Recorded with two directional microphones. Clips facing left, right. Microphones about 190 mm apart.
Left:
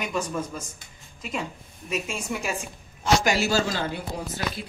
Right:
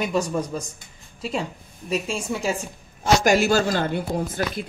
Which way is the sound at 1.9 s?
30° right (ahead or behind).